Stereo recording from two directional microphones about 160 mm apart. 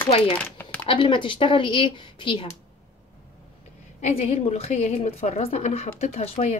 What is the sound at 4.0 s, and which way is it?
A woman's voice, 45° left (ahead or behind).